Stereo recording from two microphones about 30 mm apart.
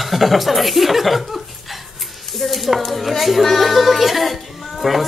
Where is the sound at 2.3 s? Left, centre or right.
Centre.